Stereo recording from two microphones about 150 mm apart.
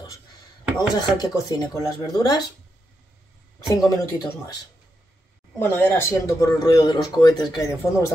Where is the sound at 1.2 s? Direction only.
25° left (ahead or behind).